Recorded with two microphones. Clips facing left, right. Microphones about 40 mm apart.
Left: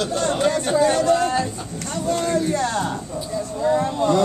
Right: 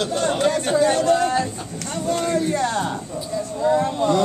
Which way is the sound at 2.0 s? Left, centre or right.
Right.